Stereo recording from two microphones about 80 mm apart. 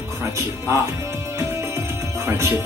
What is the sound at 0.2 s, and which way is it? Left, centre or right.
Music, right.